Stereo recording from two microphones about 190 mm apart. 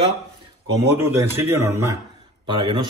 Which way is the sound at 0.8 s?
15° right (ahead or behind).